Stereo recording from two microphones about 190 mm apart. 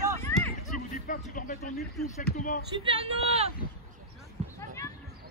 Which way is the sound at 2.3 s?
45° left (ahead or behind).